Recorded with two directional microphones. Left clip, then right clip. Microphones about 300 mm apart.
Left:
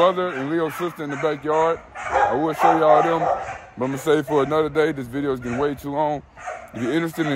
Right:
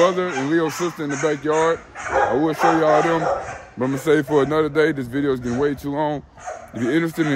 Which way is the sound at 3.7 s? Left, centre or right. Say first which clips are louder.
Right 2 dB; centre.